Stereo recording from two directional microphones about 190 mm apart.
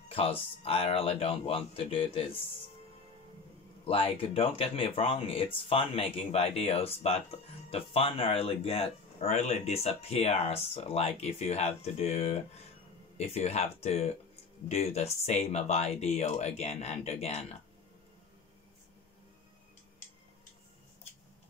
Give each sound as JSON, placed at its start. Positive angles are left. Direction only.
{"t": 0.1, "sound": "speech", "side_deg": 30}
{"t": 3.8, "sound": "speech", "side_deg": 30}